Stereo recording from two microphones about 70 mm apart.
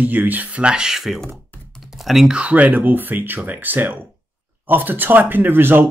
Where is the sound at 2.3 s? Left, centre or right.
Centre.